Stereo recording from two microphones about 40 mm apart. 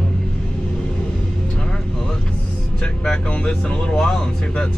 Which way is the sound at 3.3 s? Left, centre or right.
Left.